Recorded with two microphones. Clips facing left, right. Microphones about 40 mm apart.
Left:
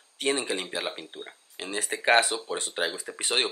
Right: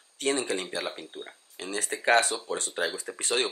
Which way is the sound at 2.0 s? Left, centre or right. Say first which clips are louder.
Left 1 dB; centre.